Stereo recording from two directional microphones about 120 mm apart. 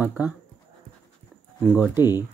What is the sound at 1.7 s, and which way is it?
Speech, 20° right (ahead or behind).